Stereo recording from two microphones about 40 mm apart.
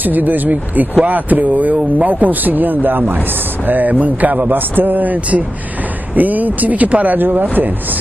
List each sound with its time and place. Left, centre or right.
0.0 s a man's voice: right